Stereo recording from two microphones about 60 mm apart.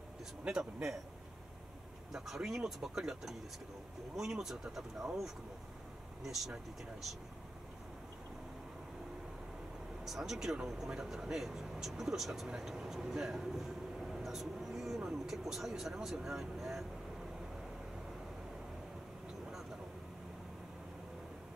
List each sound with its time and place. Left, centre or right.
0.5 s speech: centre
2.1 s speech: centre
10.0 s speech: centre